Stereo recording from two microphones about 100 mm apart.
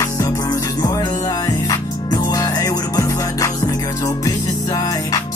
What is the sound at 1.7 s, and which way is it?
Music, 40° left (ahead or behind).